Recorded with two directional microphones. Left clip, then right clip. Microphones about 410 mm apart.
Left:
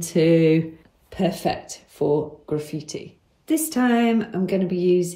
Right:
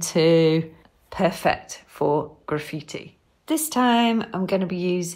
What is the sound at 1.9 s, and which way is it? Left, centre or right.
Speech, centre.